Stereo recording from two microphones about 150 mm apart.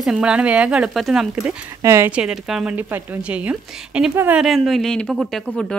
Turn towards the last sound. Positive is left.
turn(degrees=5)  # may be behind; listen again after turning